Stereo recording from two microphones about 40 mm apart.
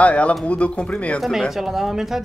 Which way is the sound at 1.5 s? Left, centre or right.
Centre.